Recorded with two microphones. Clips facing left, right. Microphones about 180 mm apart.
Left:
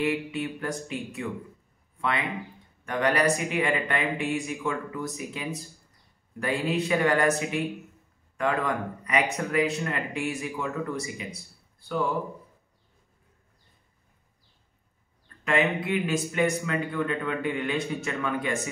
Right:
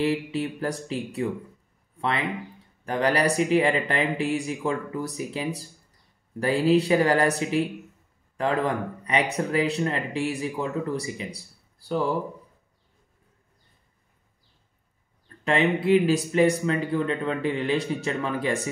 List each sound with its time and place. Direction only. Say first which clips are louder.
0.0 s speech: right 3 dB; 30° right (ahead or behind)
15.4 s speech: right 3 dB; 30° right (ahead or behind)